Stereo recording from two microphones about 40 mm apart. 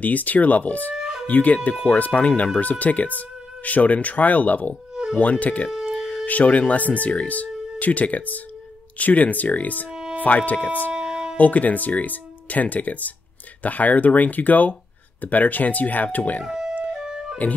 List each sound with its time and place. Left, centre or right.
0.0 s speech: left
0.9 s music: centre
1.2 s speech: left
4.9 s insect: centre
5.2 s speech: left
9.8 s music: centre
10.2 s speech: left
10.9 s music: centre
11.3 s speech: left
16.4 s music: centre